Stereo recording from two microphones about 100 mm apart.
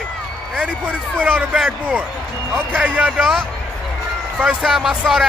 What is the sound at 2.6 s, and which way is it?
Speech, 20° right (ahead or behind).